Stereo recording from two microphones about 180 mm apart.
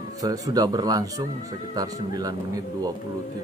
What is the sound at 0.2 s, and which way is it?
Speech, 20° right (ahead or behind).